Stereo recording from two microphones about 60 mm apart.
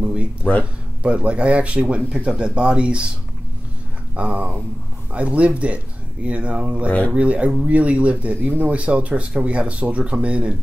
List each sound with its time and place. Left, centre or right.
0.0 s a sound: right
0.4 s speech: left
1.0 s speech: right
4.1 s speech: right